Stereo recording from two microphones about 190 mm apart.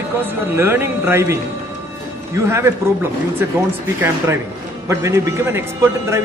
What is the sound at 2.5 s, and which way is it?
Speech, 15° right (ahead or behind).